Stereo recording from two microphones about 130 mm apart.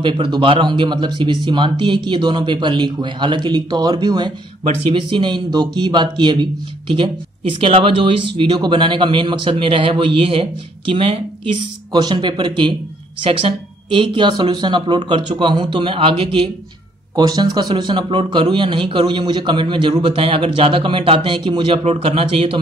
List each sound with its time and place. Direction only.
0.0 s speech: 40° right (ahead or behind)
17.1 s a man's voice: 30° right (ahead or behind)